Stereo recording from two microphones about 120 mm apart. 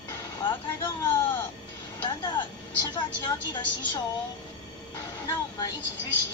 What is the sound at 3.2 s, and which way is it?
Speech, 40° left (ahead or behind).